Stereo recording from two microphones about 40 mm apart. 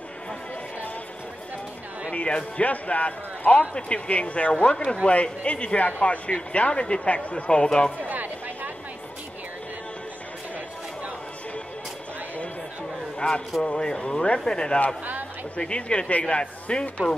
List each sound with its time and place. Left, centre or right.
2.1 s speech: left
8.0 s a sound: right
13.2 s speech: left